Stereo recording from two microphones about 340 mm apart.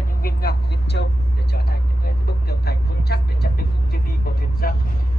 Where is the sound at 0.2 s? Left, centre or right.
Left.